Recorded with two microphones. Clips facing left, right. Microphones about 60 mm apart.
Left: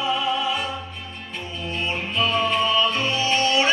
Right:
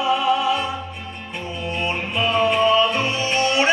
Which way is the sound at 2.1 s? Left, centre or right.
Centre.